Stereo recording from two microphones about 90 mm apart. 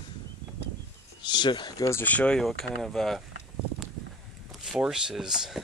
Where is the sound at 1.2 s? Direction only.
60° left (ahead or behind).